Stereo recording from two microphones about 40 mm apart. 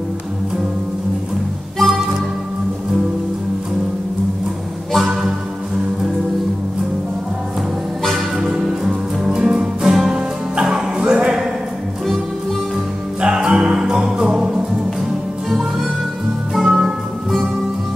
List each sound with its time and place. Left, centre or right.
1.8 s music: centre
8.5 s music: centre
13.2 s music: centre
16.5 s music: centre